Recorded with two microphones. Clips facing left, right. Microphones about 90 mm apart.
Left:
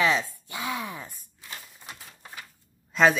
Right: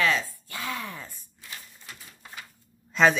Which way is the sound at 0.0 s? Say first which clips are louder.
Left 1 dB; 15° left (ahead or behind).